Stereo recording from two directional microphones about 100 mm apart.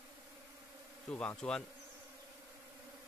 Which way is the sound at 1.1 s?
10° left (ahead or behind).